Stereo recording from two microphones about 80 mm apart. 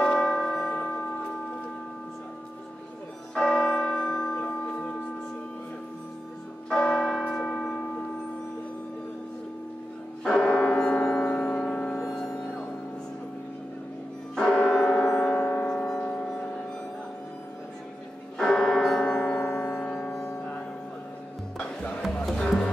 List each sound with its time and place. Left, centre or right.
0.0 s church bell: centre
3.3 s church bell: centre
6.7 s church bell: centre
10.2 s church bell: centre
11.2 s music: left
14.3 s church bell: centre
18.4 s music: centre
22.2 s music: centre